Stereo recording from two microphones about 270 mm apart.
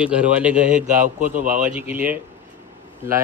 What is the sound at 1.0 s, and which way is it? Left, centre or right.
Speech, right.